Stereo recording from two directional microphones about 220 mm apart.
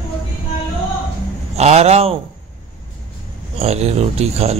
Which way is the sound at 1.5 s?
30° right (ahead or behind).